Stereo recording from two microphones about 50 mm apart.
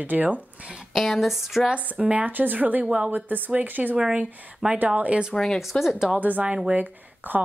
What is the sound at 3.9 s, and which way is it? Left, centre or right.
Speech, centre.